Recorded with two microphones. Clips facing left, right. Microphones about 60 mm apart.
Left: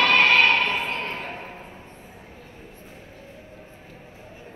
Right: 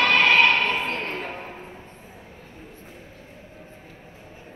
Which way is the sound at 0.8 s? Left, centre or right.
Right.